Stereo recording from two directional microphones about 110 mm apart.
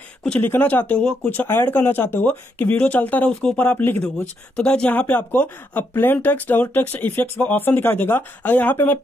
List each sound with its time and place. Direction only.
0.4 s speech: 15° left (ahead or behind)
4.6 s speech: 5° left (ahead or behind)